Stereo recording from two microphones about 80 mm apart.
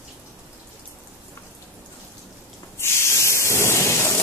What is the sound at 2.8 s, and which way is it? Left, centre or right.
Spray, left.